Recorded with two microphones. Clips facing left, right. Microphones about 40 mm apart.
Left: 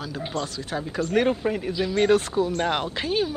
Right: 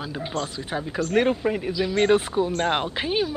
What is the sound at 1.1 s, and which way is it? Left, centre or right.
Speech, centre.